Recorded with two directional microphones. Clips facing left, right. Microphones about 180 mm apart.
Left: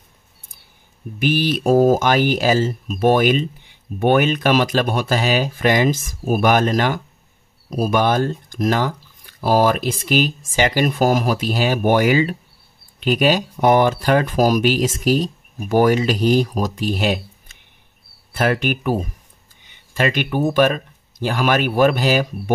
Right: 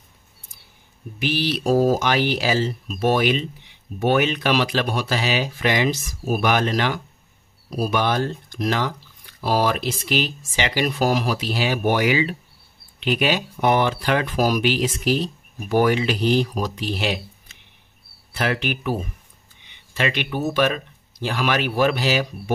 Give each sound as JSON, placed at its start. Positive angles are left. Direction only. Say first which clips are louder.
{"t": 1.2, "sound": "speech", "louder": "left 4 dB", "side_deg": 50}